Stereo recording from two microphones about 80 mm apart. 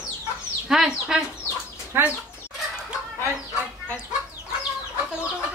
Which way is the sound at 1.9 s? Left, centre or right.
Right.